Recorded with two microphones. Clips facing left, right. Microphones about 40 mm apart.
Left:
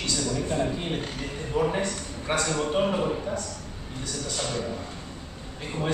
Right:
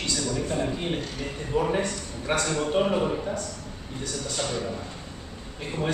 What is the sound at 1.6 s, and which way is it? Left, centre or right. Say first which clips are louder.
A man's voice: even; centre.